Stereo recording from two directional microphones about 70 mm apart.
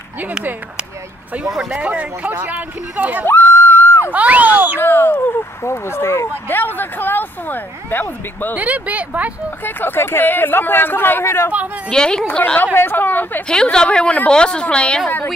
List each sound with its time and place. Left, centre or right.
1.4 s speech: centre
1.8 s speech: centre
3.3 s a sound: left
4.1 s speech: right
4.7 s speech: left
8.5 s speech: right
9.8 s speech: left
11.9 s a woman's voice: centre; by 13.4 s left
13.5 s a woman's voice: centre